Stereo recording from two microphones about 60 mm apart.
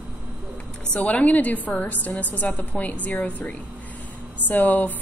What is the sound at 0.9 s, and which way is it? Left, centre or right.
A woman's voice, centre.